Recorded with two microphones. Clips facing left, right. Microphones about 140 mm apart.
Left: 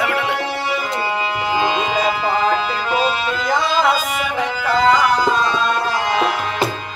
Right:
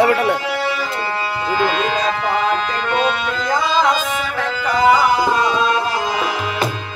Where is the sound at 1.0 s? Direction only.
15° left (ahead or behind).